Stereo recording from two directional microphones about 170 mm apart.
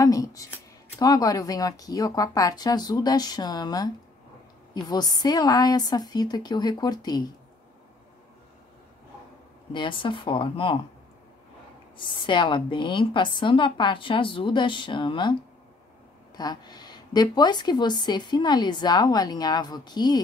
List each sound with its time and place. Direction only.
0.0 s speech: 20° left (ahead or behind)
9.7 s speech: 30° left (ahead or behind)
12.0 s speech: 30° left (ahead or behind)
16.3 s speech: 25° left (ahead or behind)